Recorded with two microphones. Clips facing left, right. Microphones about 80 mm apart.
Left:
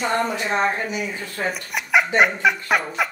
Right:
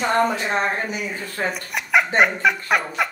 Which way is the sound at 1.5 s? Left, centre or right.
Centre.